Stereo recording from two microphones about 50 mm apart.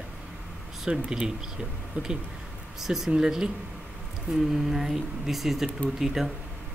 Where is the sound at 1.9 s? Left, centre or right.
Right.